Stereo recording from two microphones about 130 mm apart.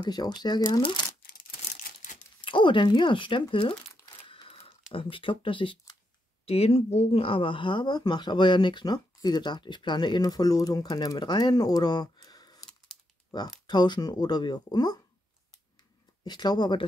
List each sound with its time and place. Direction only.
0.0 s speech: 35° left (ahead or behind)
1.8 s crumpling: 90° left
2.4 s speech: 40° left (ahead or behind)
4.0 s crumpling: 40° left (ahead or behind)
4.9 s speech: 40° left (ahead or behind)
6.4 s speech: 50° left (ahead or behind); by 15.0 s 30° left (ahead or behind)
16.3 s speech: 35° left (ahead or behind)